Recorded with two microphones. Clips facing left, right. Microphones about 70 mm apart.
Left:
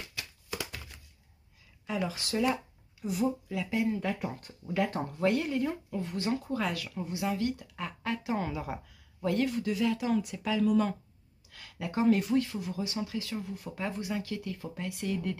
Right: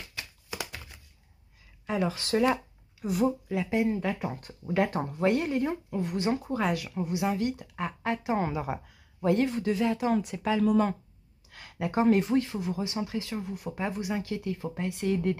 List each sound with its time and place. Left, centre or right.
0.5 s a sound: centre
1.9 s speech: right
2.4 s speech: right
3.5 s speech: right
4.9 s speech: centre
5.3 s speech: right
5.9 s speech: right
14.2 s speech: right